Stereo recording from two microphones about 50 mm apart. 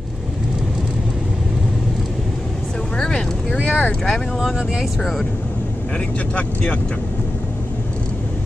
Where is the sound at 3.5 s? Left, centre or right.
Right.